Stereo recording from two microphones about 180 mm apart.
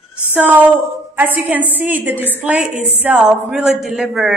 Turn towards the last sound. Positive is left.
turn(degrees=-5)  # may be behind; listen again after turning